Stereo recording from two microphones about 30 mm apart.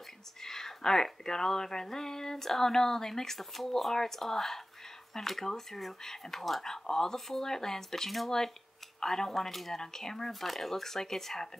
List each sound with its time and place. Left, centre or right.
0.4 s speech: centre
7.4 s speech: centre